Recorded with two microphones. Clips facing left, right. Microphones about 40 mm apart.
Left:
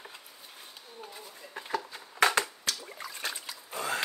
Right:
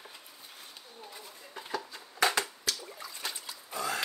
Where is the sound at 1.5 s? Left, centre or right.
Left.